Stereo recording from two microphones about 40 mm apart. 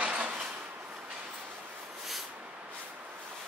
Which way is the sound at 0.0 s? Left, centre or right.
Right.